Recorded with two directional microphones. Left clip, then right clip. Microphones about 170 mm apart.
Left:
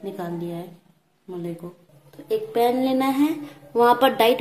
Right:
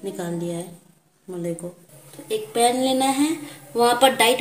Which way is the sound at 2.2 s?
10° left (ahead or behind).